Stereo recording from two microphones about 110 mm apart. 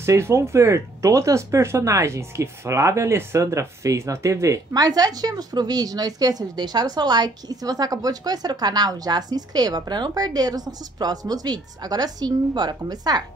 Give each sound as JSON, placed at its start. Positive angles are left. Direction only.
{"t": 0.0, "sound": "speech", "side_deg": -25}